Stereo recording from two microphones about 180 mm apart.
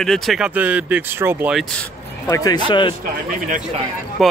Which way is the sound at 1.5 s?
5° left (ahead or behind).